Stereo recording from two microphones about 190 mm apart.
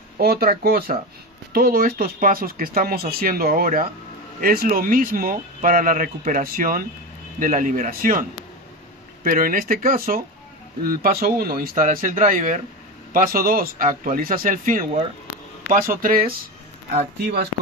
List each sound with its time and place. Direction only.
0.2 s speech: 50° right (ahead or behind)